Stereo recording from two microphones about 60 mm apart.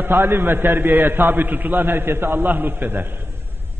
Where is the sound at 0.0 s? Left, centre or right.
Right.